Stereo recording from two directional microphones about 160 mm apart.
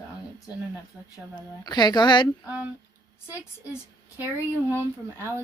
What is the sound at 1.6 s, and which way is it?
Speech, 25° left (ahead or behind).